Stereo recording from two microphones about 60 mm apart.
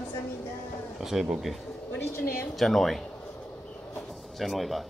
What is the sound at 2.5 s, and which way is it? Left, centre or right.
Speech, centre.